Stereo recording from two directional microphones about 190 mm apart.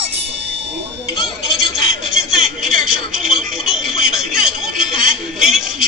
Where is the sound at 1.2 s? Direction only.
Centre (ahead or behind).